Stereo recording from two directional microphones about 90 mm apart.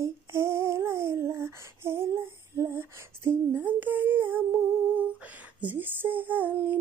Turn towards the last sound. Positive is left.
turn(degrees=-20)  # may be behind; listen again after turning